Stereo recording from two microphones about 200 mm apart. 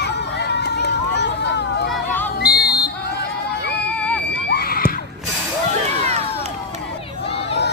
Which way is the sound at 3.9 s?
5° left (ahead or behind).